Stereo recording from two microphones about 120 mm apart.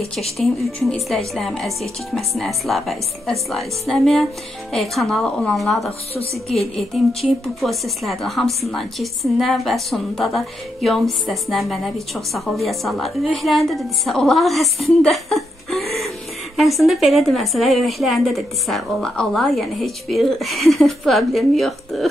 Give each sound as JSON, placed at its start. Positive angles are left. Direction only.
{"t": 0.8, "sound": "a woman's voice", "side_deg": 0}